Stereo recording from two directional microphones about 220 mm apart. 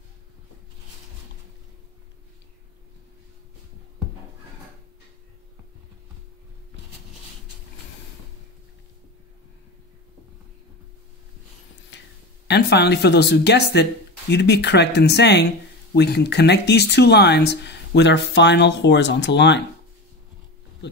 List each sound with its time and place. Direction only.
12.4 s speech: 50° left (ahead or behind)